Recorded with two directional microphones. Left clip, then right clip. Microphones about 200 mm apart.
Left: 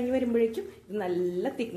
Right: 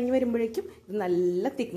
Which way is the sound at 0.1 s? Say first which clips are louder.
Left 2 dB; 30° right (ahead or behind).